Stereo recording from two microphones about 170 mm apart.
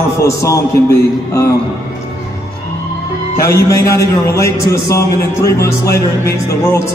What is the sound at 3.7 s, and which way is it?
A man's voice, 15° left (ahead or behind).